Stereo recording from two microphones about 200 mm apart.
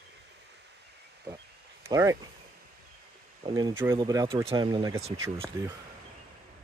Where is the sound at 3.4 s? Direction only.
25° right (ahead or behind).